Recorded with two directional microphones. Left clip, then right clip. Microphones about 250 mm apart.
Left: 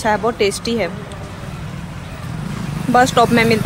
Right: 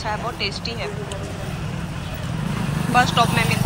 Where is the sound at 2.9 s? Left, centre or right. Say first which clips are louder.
Left 5 dB; left.